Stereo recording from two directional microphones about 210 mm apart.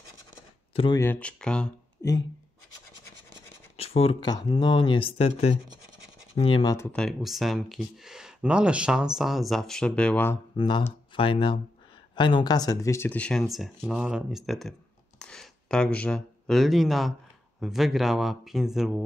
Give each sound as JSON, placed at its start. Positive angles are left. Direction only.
{"t": 0.9, "sound": "speech", "side_deg": 10}
{"t": 3.7, "sound": "speech", "side_deg": 30}
{"t": 6.9, "sound": "speech", "side_deg": 0}
{"t": 10.6, "sound": "speech", "side_deg": 20}